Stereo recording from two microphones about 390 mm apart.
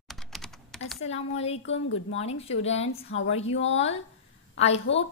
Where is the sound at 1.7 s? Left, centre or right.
Left.